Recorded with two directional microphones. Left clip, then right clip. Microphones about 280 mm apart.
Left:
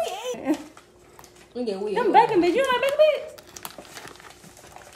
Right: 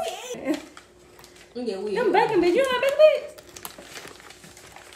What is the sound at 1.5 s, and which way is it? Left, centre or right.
Speech, left.